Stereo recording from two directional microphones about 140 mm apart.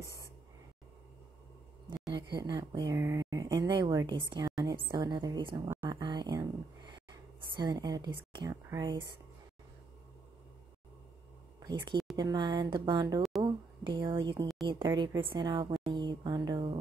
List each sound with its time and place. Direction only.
2.0 s a woman's voice: 30° right (ahead or behind)
5.9 s a sound: 30° right (ahead or behind)
8.6 s speech: 30° right (ahead or behind)
11.6 s speech: 35° right (ahead or behind)
13.4 s a sound: 30° right (ahead or behind)
14.7 s speech: 35° right (ahead or behind)